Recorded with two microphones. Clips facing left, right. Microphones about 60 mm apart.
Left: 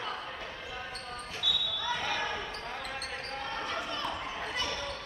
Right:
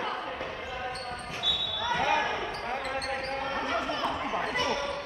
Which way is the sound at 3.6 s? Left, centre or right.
Right.